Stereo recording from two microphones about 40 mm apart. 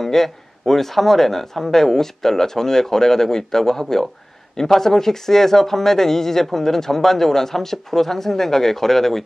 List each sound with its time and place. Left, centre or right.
0.0 s speech: centre